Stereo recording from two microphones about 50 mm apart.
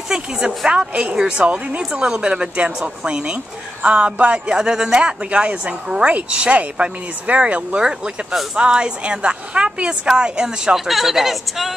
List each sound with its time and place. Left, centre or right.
0.1 s a woman's voice: centre
1.8 s a woman's voice: centre
4.6 s a woman's voice: centre